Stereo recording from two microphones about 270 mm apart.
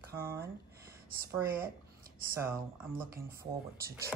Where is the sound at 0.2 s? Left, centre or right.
Centre.